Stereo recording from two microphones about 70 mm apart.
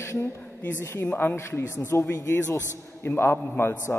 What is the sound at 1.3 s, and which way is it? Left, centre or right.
Speech, left.